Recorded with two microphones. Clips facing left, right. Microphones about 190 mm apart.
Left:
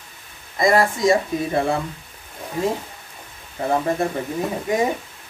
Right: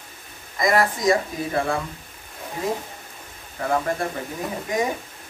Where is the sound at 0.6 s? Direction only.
25° left (ahead or behind).